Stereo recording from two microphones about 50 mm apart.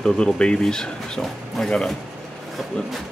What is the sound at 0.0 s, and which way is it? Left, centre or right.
Speech, centre.